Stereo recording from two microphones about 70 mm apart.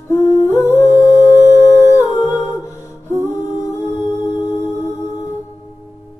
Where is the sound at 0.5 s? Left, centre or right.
Left.